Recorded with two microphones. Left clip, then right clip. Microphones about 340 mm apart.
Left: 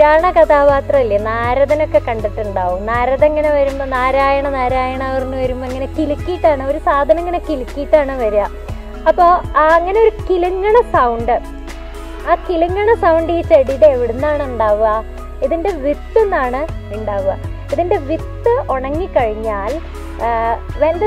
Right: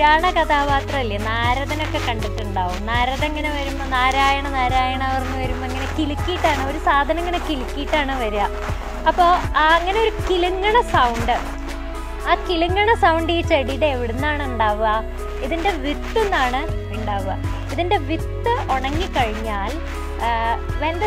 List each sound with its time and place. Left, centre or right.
0.0 s speech: right
17.7 s speech: right